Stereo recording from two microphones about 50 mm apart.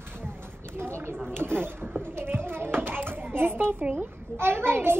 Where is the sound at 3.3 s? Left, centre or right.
Right.